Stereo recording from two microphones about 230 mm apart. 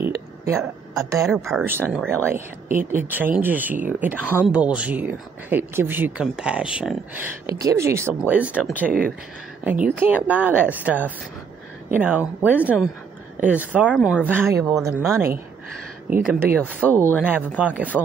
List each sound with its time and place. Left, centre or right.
0.0 s a sound: centre
1.3 s speech: centre
16.3 s speech: centre